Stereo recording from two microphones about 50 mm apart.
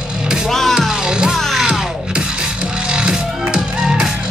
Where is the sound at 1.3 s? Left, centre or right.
Centre.